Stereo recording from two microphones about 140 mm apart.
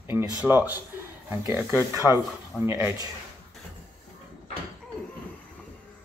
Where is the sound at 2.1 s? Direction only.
20° right (ahead or behind).